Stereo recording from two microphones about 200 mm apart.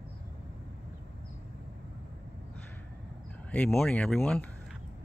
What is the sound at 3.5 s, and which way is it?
Speech, 5° left (ahead or behind).